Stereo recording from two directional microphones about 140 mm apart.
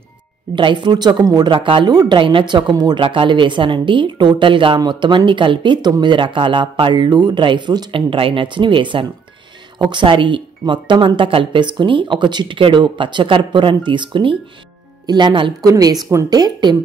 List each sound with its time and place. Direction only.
0.6 s a woman's voice: 35° right (ahead or behind)